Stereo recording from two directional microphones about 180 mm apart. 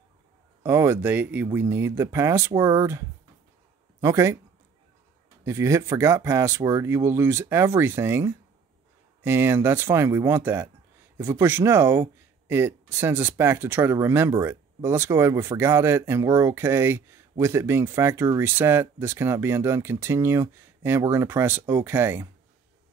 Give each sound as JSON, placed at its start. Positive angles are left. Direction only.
{"t": 0.7, "sound": "speech", "side_deg": -15}
{"t": 5.4, "sound": "speech", "side_deg": -15}